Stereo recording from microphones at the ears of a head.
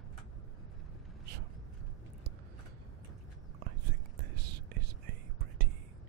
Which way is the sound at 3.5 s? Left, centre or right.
Right.